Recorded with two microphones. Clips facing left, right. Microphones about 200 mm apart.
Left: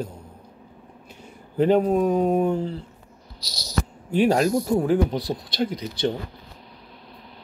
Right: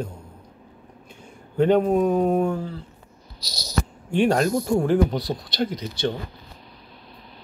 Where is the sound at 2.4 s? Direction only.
25° left (ahead or behind).